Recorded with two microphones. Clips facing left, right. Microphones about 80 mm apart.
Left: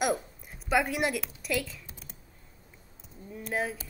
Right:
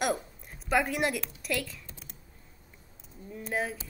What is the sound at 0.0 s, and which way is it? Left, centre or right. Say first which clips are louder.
A woman's voice: left 1 dB; centre.